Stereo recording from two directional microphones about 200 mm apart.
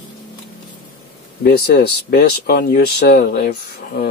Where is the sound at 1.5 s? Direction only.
55° left (ahead or behind).